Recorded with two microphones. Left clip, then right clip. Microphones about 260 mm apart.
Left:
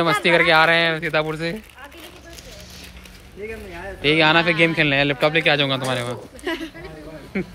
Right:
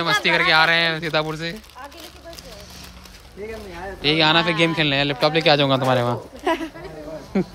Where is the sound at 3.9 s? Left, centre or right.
Centre.